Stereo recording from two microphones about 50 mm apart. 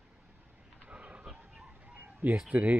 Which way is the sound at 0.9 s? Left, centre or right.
Right.